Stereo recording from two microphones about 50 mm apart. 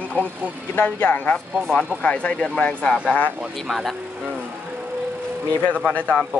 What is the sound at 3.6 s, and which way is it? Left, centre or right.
Speech, centre.